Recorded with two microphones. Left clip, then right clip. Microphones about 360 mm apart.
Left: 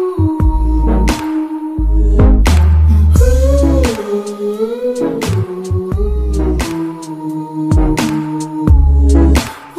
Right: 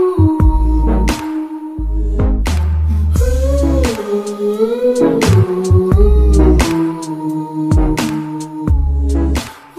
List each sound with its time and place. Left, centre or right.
0.0 s music: right
0.7 s music: centre; by 1.5 s left
2.1 s music: left
3.2 s music: left; by 4.0 s centre
4.4 s music: right
7.6 s music: centre
7.9 s music: left
8.6 s music: left